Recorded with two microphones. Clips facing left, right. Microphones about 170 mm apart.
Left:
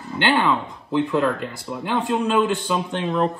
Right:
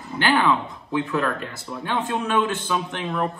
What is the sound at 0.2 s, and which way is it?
A man's voice, 20° left (ahead or behind).